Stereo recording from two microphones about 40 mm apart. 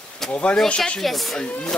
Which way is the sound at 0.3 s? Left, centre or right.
Left.